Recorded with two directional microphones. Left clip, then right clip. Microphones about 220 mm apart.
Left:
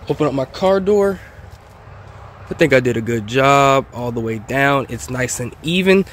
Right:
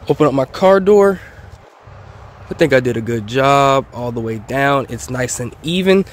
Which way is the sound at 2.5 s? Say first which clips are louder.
Right 1 dB; centre (ahead or behind).